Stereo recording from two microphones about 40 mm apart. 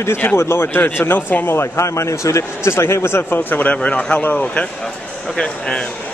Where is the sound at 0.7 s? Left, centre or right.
Left.